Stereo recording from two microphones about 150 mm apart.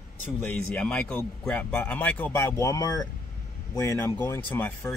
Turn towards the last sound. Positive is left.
turn(degrees=15)  # may be behind; listen again after turning